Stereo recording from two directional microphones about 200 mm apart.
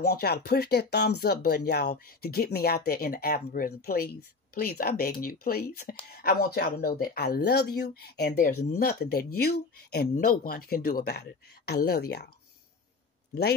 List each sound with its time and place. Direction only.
0.0 s speech: 50° left (ahead or behind)
13.3 s speech: 55° left (ahead or behind)